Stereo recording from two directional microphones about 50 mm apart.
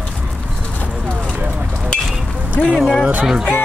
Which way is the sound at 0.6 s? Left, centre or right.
Left.